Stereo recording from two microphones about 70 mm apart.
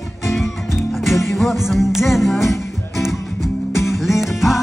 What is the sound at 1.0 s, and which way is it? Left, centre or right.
Music, centre.